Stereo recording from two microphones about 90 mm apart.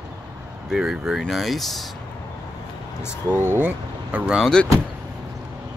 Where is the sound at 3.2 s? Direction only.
25° right (ahead or behind).